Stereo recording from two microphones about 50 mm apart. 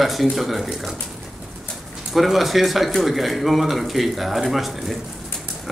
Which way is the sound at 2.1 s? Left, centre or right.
Centre.